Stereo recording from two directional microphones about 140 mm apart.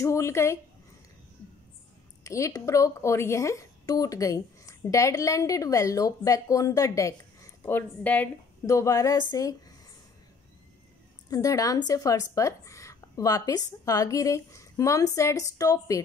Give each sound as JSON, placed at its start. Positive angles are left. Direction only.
{"t": 0.0, "sound": "a woman's voice", "side_deg": 20}
{"t": 2.2, "sound": "a woman's voice", "side_deg": 20}
{"t": 8.6, "sound": "a woman's voice", "side_deg": 20}
{"t": 11.2, "sound": "a woman's voice", "side_deg": 25}